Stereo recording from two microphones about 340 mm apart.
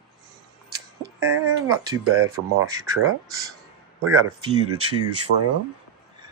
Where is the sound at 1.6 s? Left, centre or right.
Centre.